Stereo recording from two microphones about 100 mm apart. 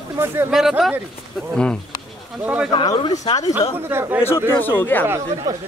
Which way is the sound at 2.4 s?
15° right (ahead or behind).